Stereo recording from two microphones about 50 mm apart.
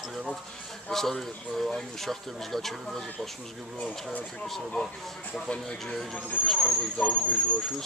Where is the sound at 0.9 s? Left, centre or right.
Centre.